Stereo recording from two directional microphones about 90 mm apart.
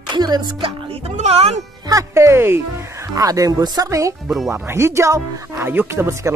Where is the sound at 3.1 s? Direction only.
40° right (ahead or behind).